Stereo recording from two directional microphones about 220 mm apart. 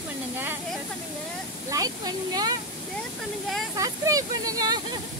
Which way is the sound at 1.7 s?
15° right (ahead or behind).